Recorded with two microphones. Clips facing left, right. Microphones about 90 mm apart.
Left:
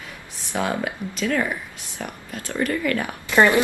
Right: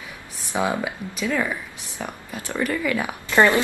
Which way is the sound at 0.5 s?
15° right (ahead or behind).